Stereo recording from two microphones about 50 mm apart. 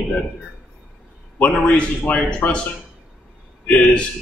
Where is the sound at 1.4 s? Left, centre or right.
Left.